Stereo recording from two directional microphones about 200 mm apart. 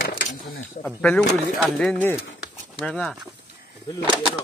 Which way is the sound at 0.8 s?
5° left (ahead or behind).